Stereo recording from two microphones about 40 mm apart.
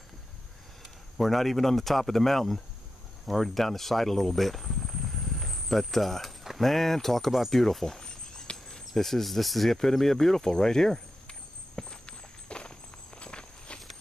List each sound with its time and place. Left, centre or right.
1.1 s speech: centre
11.2 s walk: left